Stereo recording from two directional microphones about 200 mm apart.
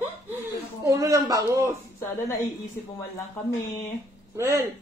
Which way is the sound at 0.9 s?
15° right (ahead or behind).